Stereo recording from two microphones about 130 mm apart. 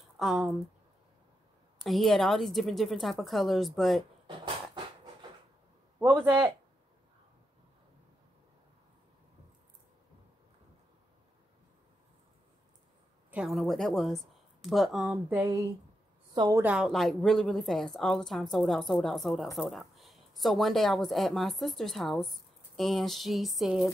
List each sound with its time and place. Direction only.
0.2 s a woman's voice: 5° right (ahead or behind)
1.8 s a woman's voice: centre (ahead or behind)
5.9 s a man's voice: 15° right (ahead or behind)
13.3 s speech: 5° right (ahead or behind)
15.3 s speech: 20° right (ahead or behind)
16.6 s a woman's voice: 5° right (ahead or behind)